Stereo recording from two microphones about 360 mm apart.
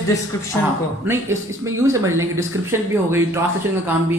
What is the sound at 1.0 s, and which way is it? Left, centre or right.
Speech, centre.